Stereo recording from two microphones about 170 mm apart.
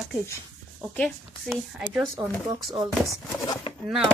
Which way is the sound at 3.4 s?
20° left (ahead or behind).